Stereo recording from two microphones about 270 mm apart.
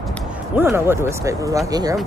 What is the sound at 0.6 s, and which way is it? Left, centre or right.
Speech, centre.